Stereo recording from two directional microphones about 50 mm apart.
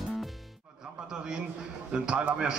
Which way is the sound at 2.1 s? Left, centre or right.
Centre.